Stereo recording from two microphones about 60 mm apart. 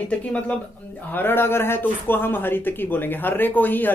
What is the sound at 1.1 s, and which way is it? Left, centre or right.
Speech, left.